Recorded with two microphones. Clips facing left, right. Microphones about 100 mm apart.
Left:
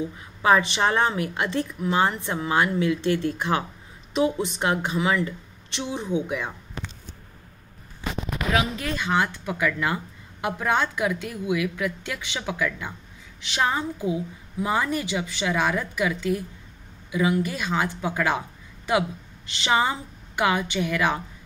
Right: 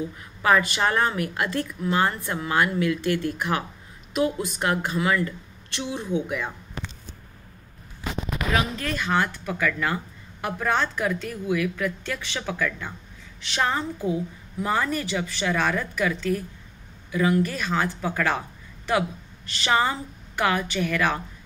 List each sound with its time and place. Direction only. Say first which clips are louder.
0.4 s a woman's voice: left 1 dB; 25° left (ahead or behind)
8.5 s a woman's voice: left 1 dB; 15° left (ahead or behind)